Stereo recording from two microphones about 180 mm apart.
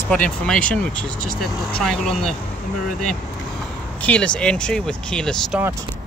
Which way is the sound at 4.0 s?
5° left (ahead or behind).